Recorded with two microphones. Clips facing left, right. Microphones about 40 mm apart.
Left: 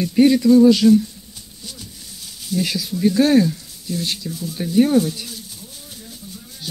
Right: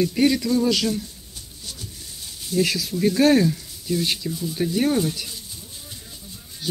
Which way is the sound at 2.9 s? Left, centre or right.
Centre.